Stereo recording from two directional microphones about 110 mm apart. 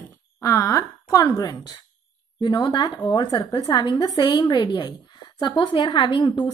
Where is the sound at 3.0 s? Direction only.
45° left (ahead or behind).